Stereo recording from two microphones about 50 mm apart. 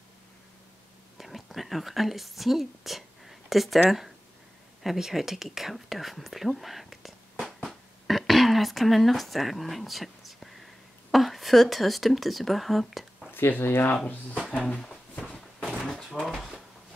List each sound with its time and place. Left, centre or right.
1.1 s speech: centre
4.8 s speech: centre
13.3 s speech: left
14.6 s a sound: centre
15.2 s slam: centre
15.8 s door: centre
16.2 s drawer open or close: centre